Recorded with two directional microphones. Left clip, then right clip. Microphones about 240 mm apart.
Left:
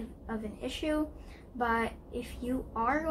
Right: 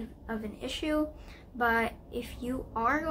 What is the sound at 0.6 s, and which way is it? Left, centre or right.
A woman's voice, centre.